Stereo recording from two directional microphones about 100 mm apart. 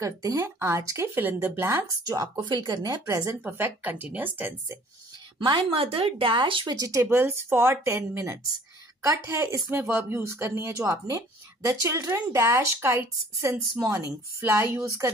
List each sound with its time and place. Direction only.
0.0 s speech: 35° right (ahead or behind)
2.0 s speech: 45° right (ahead or behind)
3.4 s speech: 20° right (ahead or behind)
5.4 s speech: 60° right (ahead or behind)
6.6 s speech: 40° right (ahead or behind)